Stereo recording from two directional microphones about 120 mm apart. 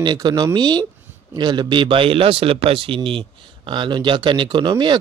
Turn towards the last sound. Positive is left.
turn(degrees=-40)  # may be behind; listen again after turning